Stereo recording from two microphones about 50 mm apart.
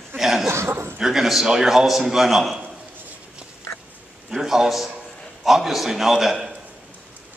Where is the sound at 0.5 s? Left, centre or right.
Right.